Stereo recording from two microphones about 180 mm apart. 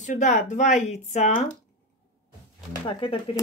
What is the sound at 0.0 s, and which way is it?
Speech, 45° left (ahead or behind).